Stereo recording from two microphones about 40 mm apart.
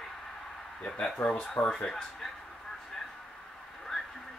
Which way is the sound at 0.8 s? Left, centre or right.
Left.